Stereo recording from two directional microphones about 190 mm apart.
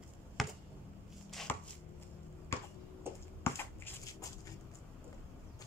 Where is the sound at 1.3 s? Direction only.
Centre (ahead or behind).